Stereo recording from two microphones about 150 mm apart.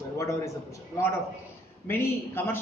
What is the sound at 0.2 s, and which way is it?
A man's voice, 20° left (ahead or behind).